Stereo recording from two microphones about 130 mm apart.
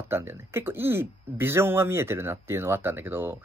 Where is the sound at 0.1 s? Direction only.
20° right (ahead or behind).